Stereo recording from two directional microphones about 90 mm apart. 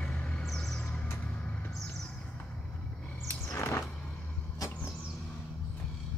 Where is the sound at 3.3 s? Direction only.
20° left (ahead or behind).